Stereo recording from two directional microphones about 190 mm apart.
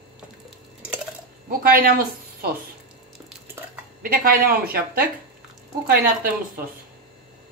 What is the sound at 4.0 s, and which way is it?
A woman's voice, 50° right (ahead or behind).